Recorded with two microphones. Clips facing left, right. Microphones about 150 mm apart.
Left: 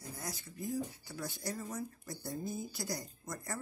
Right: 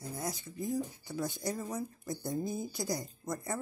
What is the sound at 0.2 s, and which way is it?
Speech, 20° right (ahead or behind).